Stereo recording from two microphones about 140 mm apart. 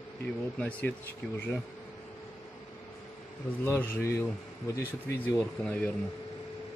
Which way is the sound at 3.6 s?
15° left (ahead or behind).